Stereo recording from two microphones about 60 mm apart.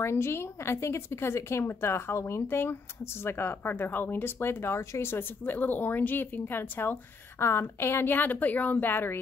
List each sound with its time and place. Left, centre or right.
0.0 s speech: left
5.4 s speech: left
7.3 s speech: left